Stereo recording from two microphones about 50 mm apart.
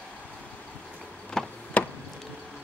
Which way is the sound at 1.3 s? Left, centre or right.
Centre.